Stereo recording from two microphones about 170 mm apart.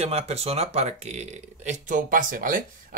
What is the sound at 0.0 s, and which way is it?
Speech, 35° right (ahead or behind).